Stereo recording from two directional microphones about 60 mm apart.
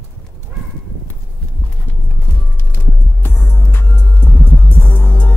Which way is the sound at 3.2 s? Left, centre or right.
Left.